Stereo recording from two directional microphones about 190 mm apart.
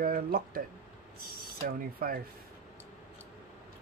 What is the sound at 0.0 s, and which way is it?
Speech, 50° right (ahead or behind).